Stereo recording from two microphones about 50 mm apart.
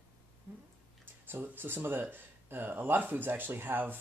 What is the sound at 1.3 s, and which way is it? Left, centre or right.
Speech, right.